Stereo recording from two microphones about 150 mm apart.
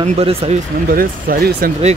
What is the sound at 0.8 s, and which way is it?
Speech, 70° right (ahead or behind).